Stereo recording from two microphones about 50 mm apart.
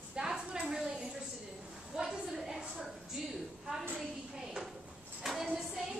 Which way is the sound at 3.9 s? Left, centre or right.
Centre.